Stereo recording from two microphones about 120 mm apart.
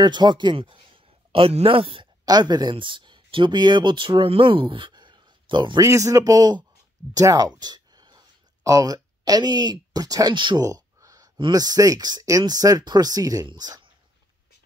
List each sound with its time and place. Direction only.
0.0 s a man's voice: 40° right (ahead or behind)
2.2 s speech: 35° right (ahead or behind)
5.8 s speech: 25° right (ahead or behind)
10.6 s a sound: 30° right (ahead or behind)
11.3 s speech: 40° right (ahead or behind)